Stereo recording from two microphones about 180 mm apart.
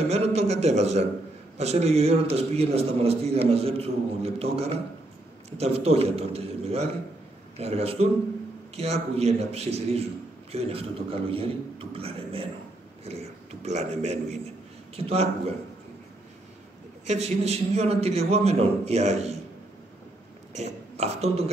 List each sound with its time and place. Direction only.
0.1 s a sound: 35° right (ahead or behind)
1.6 s a man's voice: 35° right (ahead or behind)
17.0 s a man's voice: 35° right (ahead or behind)
20.5 s speech: 35° right (ahead or behind)